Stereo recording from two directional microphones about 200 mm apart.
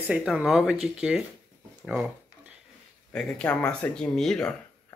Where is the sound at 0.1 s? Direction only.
5° right (ahead or behind).